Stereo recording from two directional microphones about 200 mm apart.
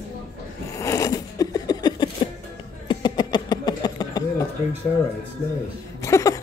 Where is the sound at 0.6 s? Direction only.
15° left (ahead or behind).